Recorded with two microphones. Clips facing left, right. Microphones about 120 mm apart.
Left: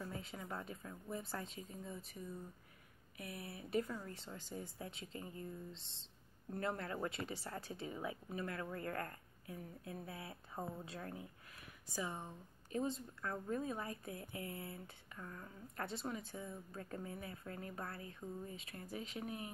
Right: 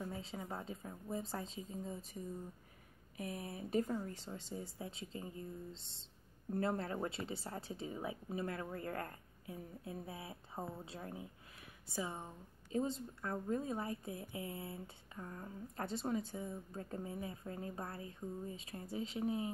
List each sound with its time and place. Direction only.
0.1 s a woman's voice: 25° right (ahead or behind)
4.4 s a woman's voice: 25° right (ahead or behind)
6.5 s a woman's voice: 30° right (ahead or behind)